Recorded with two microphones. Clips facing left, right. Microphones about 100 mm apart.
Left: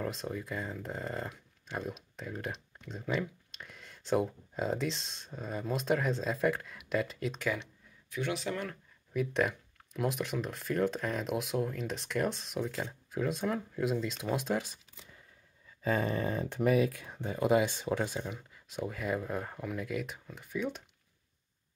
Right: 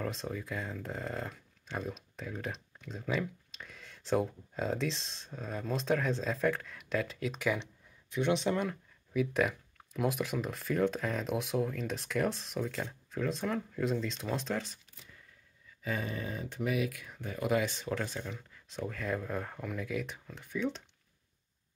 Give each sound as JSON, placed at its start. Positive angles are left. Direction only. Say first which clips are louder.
{"t": 0.0, "sound": "speech", "louder": "left 1 dB", "side_deg": 0}
{"t": 7.4, "sound": "speech", "louder": "right 2 dB", "side_deg": -20}
{"t": 9.1, "sound": "speech", "louder": "right 1 dB", "side_deg": 0}
{"t": 15.8, "sound": "a sound", "louder": "left 6 dB", "side_deg": 40}
{"t": 16.6, "sound": "speech", "louder": "left 5 dB", "side_deg": 35}